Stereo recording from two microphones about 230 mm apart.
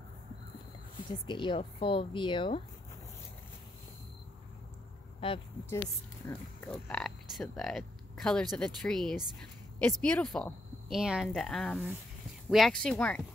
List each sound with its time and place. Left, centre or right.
1.1 s speech: centre
5.2 s speech: left
6.7 s speech: centre